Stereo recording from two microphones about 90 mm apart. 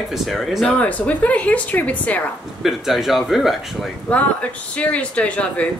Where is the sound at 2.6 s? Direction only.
5° right (ahead or behind).